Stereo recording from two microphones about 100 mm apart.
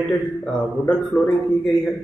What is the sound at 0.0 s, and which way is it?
A man's voice, 10° left (ahead or behind).